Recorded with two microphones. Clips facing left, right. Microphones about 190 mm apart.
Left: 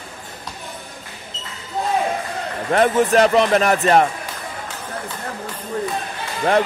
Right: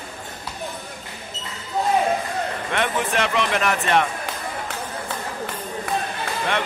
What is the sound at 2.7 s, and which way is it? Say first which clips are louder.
Speech: left 10 dB; 40° left (ahead or behind).